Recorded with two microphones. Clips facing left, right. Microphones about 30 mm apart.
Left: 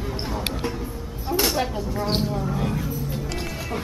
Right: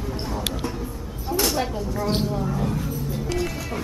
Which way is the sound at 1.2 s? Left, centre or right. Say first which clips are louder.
Left 1 dB; centre.